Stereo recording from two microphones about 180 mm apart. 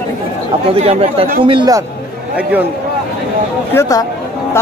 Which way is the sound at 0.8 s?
35° right (ahead or behind).